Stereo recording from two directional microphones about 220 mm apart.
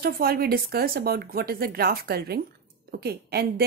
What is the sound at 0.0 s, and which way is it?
A woman's voice, 45° right (ahead or behind).